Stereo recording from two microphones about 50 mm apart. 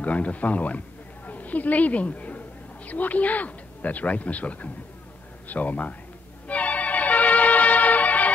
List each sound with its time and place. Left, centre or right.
0.0 s a woman's voice: left
6.4 s music: left